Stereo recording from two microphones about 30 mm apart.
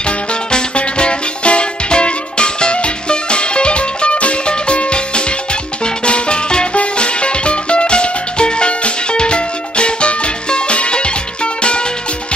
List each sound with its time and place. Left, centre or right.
0.0 s music: left